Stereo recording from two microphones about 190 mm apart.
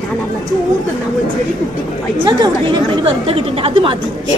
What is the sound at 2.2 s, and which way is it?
Speech, 25° right (ahead or behind).